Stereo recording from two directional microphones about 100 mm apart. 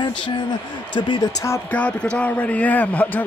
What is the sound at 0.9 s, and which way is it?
Speech, 50° left (ahead or behind).